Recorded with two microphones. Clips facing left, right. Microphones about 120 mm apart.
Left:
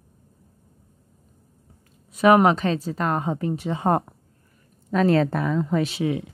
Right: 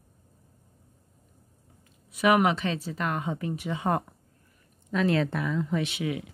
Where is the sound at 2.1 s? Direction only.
35° left (ahead or behind).